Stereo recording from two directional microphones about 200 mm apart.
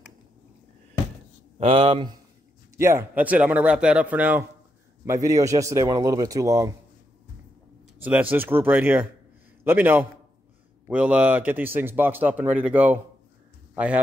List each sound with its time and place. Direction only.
1.6 s speech: 25° right (ahead or behind)
2.8 s a man's voice: 15° right (ahead or behind)
8.0 s a man's voice: 10° right (ahead or behind)